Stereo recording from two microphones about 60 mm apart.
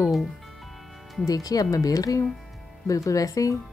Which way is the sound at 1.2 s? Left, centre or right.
Left.